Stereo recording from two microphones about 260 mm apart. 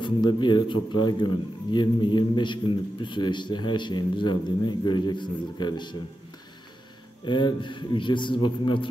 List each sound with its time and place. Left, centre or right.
0.0 s a man's voice: centre
7.2 s a man's voice: centre